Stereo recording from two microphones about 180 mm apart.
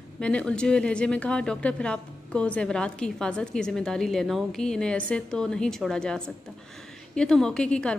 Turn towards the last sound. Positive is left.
turn(degrees=5)  # may be behind; listen again after turning